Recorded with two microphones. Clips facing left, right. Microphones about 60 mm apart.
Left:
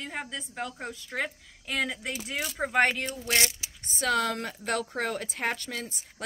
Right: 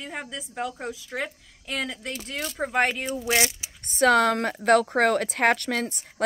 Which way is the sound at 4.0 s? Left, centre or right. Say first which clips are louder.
Right 8 dB; right.